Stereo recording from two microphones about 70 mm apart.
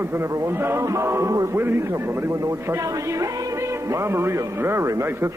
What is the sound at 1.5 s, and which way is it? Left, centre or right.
Speech, right.